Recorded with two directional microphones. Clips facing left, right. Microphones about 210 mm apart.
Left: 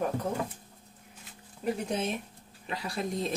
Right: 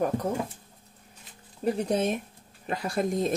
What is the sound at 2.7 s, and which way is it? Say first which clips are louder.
Speech: right 6 dB; 50° right (ahead or behind).